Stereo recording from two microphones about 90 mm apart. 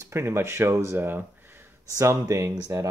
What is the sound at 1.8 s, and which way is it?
Speech, 35° right (ahead or behind).